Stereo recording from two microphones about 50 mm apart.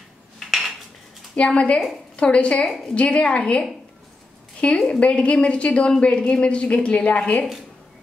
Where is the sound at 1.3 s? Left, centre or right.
Left.